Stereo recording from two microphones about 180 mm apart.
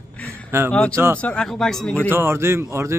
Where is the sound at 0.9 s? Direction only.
15° right (ahead or behind).